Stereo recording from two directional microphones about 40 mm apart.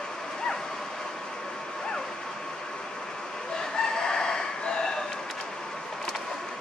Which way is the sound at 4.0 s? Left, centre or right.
Centre.